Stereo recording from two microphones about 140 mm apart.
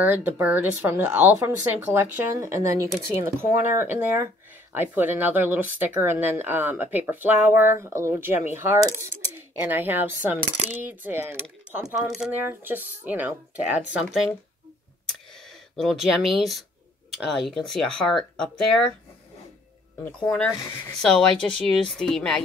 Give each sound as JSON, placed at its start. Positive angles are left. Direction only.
{"t": 0.0, "sound": "speech", "side_deg": -15}
{"t": 15.7, "sound": "speech", "side_deg": 0}
{"t": 20.1, "sound": "speech", "side_deg": 5}